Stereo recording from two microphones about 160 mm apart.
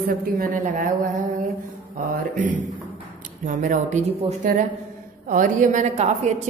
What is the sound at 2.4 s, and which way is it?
A woman's voice, 55° right (ahead or behind).